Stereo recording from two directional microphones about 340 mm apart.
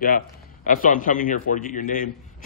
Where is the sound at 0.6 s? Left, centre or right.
Left.